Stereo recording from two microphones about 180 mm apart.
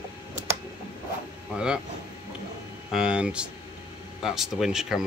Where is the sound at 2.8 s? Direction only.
5° right (ahead or behind).